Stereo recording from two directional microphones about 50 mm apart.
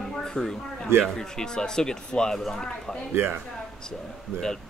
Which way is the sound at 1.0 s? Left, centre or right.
Centre.